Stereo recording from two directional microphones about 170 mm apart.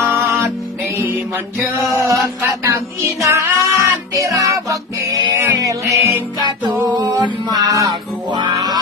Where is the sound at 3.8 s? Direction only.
20° right (ahead or behind).